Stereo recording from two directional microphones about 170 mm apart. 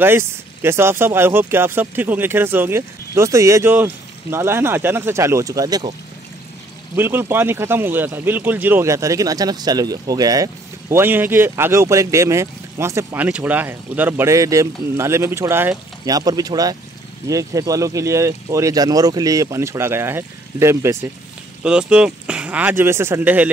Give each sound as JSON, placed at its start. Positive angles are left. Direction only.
{"t": 0.0, "sound": "speech", "side_deg": -15}
{"t": 7.0, "sound": "speech", "side_deg": -15}
{"t": 21.6, "sound": "speech", "side_deg": -5}